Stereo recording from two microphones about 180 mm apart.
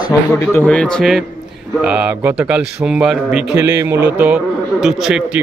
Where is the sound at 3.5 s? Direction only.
15° right (ahead or behind).